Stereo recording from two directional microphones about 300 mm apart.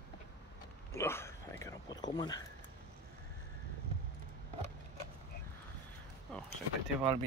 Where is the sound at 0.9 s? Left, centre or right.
Centre.